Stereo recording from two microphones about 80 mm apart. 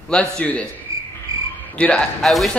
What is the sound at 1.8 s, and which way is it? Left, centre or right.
Speech, centre.